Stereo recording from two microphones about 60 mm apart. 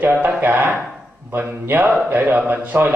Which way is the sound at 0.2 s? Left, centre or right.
Right.